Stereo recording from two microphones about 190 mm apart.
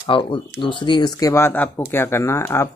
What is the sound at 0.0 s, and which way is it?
Speech, 25° left (ahead or behind).